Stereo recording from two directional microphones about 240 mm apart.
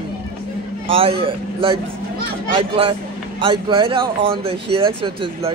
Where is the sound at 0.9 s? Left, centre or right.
Right.